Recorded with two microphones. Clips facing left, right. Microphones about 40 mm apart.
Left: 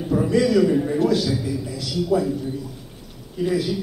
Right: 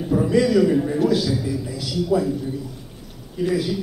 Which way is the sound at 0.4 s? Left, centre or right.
Centre.